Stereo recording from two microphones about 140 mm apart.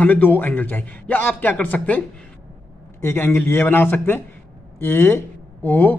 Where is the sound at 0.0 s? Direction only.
15° left (ahead or behind).